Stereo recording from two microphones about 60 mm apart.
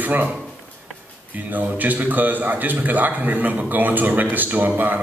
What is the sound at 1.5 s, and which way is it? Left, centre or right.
A man's voice, right.